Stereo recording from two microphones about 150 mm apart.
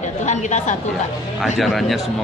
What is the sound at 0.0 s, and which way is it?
Chatter, 55° left (ahead or behind).